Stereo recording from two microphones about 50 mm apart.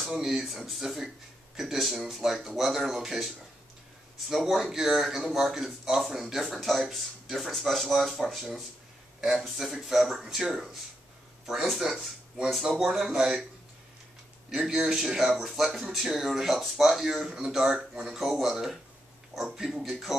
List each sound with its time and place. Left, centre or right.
0.2 s speech: centre
14.5 s speech: centre